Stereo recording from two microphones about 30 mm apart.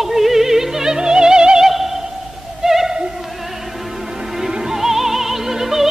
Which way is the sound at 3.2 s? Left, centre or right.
Centre.